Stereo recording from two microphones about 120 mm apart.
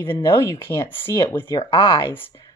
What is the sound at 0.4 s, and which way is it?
Speech, 20° left (ahead or behind).